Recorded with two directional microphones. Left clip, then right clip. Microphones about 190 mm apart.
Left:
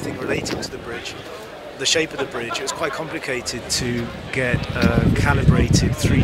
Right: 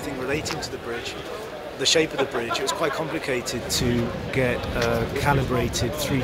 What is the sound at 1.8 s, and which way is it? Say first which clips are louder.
Speech: left 1 dB; 5° left (ahead or behind).